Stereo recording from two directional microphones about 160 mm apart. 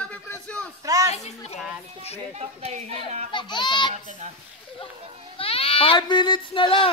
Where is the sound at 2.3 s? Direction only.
45° right (ahead or behind).